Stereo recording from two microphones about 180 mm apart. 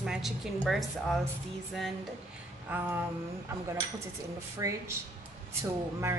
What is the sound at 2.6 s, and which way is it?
Speech, 10° right (ahead or behind).